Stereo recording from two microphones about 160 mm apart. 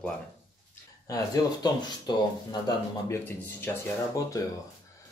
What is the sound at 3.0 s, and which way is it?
Speech, 15° left (ahead or behind).